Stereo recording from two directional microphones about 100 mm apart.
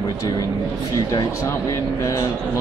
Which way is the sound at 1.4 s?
35° left (ahead or behind).